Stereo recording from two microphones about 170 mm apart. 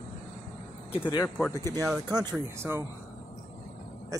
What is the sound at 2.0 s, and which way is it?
Speech, 25° right (ahead or behind).